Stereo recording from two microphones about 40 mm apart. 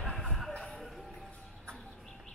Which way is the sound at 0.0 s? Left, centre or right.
Centre.